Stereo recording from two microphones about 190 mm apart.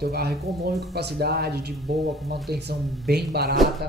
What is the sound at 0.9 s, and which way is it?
Speech, 60° right (ahead or behind).